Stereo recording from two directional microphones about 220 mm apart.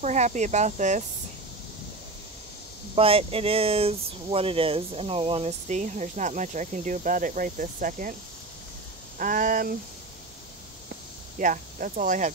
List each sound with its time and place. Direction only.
0.0 s speech: 30° right (ahead or behind)
3.0 s speech: 25° right (ahead or behind)
9.2 s speech: 40° right (ahead or behind)
11.3 s speech: 35° right (ahead or behind)